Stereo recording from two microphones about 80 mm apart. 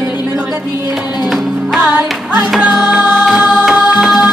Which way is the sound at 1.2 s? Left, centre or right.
Centre.